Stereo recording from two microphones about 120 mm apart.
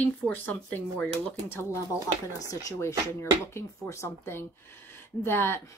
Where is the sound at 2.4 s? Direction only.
30° left (ahead or behind).